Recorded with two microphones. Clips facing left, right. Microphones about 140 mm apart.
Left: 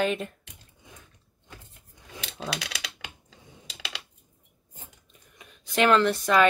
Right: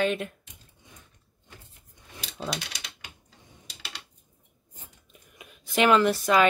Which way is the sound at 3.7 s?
90° left.